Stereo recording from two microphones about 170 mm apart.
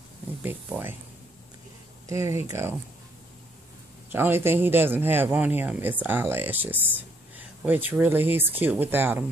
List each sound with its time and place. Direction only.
0.4 s speech: 10° right (ahead or behind)
2.0 s speech: 15° right (ahead or behind)
4.1 s speech: 15° right (ahead or behind)